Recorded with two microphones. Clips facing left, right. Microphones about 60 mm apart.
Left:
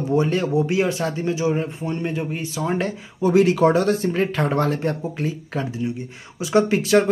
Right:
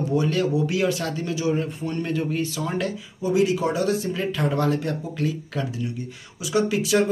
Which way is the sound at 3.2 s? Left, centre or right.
Left.